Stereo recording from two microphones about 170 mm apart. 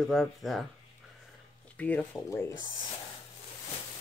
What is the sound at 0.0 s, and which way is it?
Speech, centre (ahead or behind).